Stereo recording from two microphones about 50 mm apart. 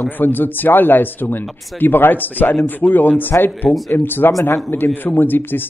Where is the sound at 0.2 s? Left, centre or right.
Left.